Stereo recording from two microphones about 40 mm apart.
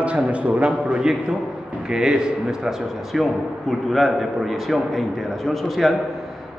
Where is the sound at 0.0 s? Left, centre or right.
Right.